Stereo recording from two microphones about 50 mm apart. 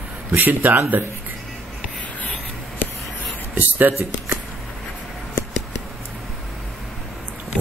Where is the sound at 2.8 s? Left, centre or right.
Left.